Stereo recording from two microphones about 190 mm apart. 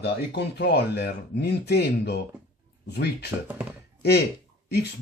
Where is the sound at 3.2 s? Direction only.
10° right (ahead or behind).